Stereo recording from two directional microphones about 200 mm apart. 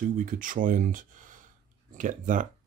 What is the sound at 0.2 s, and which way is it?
Speech, 40° right (ahead or behind).